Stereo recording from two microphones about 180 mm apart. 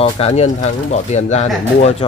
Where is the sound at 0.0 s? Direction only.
35° left (ahead or behind).